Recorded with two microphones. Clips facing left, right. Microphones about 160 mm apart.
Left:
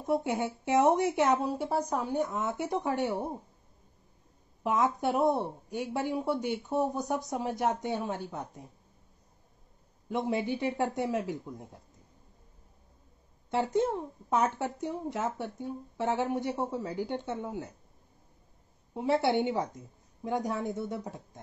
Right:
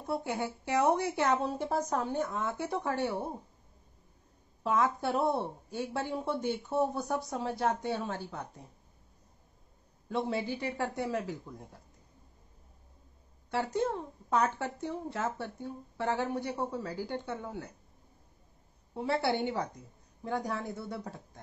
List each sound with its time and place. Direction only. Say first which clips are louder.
0.0 s speech: left 4 dB; 20° left (ahead or behind)
4.6 s speech: left 1 dB; 20° left (ahead or behind)
10.0 s speech: left 2 dB; 15° left (ahead or behind)
13.5 s speech: left 3 dB; 20° left (ahead or behind)
18.9 s speech: left 4 dB; 20° left (ahead or behind)